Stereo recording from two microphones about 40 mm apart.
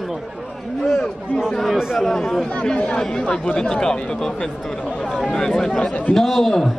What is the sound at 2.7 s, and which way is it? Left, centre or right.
Speech, left.